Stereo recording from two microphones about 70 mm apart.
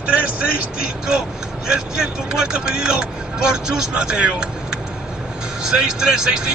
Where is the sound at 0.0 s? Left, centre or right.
Centre.